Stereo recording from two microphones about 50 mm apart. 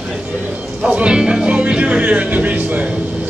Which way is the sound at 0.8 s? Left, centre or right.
Right.